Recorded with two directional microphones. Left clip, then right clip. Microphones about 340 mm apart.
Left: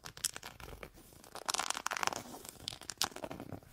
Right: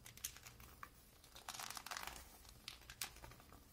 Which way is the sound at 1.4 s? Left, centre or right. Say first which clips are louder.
Left 13 dB; left.